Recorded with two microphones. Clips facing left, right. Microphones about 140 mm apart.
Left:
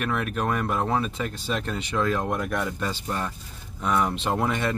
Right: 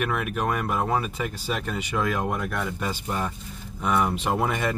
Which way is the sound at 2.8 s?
10° right (ahead or behind).